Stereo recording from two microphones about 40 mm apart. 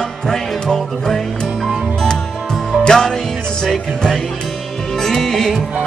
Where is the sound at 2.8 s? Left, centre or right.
Centre.